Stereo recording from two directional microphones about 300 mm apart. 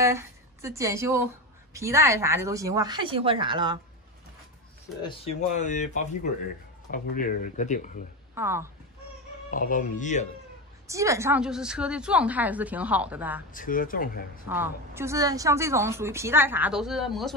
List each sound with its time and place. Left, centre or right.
0.0 s a woman's voice: centre
5.0 s speech: left
8.4 s a woman's voice: centre
9.5 s speech: left
10.9 s a woman's voice: centre
13.5 s speech: left
14.5 s a woman's voice: centre